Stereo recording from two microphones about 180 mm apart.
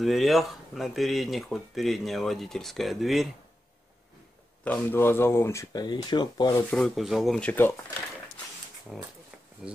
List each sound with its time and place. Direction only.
0.0 s speech: centre (ahead or behind)
4.6 s speech: 10° left (ahead or behind)
6.7 s speech: centre (ahead or behind)
8.9 s speech: centre (ahead or behind)